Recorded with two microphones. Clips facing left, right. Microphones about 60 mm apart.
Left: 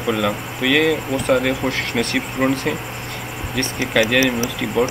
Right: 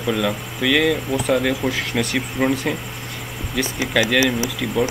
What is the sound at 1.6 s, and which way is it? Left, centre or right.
Speech, left.